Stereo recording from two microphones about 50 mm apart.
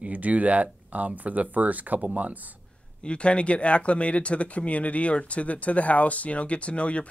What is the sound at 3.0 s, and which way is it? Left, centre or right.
Speech, left.